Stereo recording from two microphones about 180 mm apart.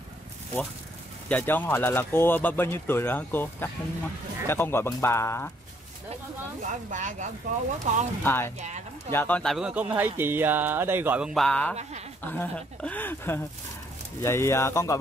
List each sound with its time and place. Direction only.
1.3 s speech: 10° left (ahead or behind)
6.6 s speech: 45° right (ahead or behind)
8.2 s speech: 10° left (ahead or behind)
8.5 s speech: 40° right (ahead or behind)
9.1 s speech: 10° left (ahead or behind)